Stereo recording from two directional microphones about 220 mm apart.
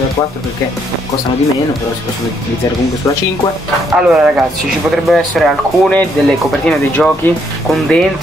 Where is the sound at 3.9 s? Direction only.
5° right (ahead or behind).